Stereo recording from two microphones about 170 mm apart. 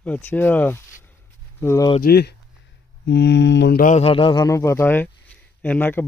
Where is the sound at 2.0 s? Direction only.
65° left (ahead or behind).